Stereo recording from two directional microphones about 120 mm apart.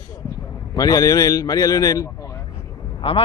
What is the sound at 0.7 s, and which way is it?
A man's voice, 30° left (ahead or behind).